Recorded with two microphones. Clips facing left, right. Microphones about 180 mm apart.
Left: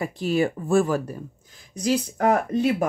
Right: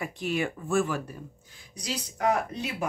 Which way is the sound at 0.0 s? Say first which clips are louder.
Left 7 dB; 35° left (ahead or behind).